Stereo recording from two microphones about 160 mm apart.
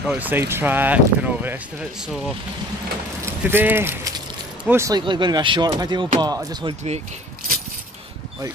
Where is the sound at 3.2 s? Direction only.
15° right (ahead or behind).